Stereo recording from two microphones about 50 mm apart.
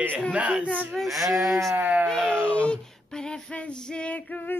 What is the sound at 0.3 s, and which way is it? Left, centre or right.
Speech, right.